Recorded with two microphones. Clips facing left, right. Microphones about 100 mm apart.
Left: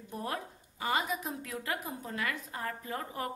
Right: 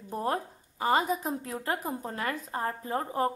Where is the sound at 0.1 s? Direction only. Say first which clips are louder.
Right 7 dB; 35° right (ahead or behind).